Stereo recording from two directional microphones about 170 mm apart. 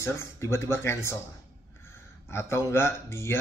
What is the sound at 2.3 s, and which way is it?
Speech, 15° left (ahead or behind).